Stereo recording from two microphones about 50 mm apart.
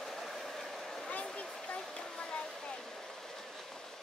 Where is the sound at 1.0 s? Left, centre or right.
Left.